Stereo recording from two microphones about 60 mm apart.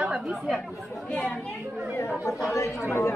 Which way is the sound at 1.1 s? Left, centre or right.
Centre.